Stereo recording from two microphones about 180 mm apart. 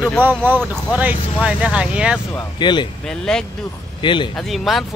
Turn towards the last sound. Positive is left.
turn(degrees=0)  # may be behind; listen again after turning